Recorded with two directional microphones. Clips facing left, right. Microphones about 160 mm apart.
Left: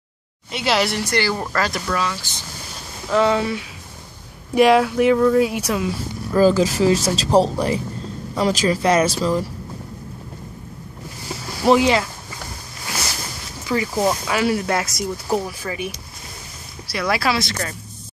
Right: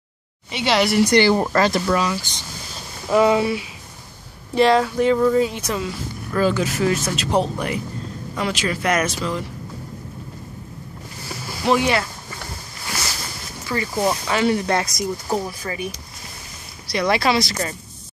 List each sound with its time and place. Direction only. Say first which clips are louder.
0.5 s speech: right 1 dB; centre (ahead or behind)
1.0 s speech: right 6 dB; 15° right (ahead or behind)
1.3 s speech: right 5 dB; 25° right (ahead or behind)
3.1 s speech: right 2 dB; 10° right (ahead or behind)
4.6 s speech: left 2 dB; 10° left (ahead or behind)
6.3 s speech: left 5 dB; 35° left (ahead or behind)
11.7 s speech: left 3 dB; 20° left (ahead or behind)
13.7 s speech: left 2 dB; 15° left (ahead or behind)
16.9 s speech: right 2 dB; centre (ahead or behind)